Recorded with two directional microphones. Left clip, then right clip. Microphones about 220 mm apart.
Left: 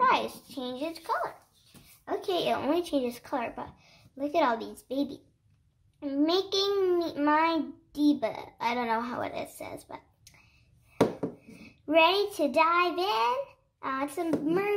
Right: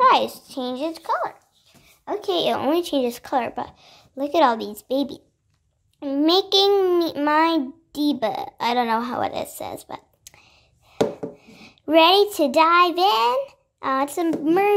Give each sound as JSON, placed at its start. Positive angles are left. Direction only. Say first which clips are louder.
{"t": 0.0, "sound": "a child's voice", "louder": "right 9 dB", "side_deg": -45}
{"t": 11.5, "sound": "a child's voice", "louder": "right 7 dB", "side_deg": -45}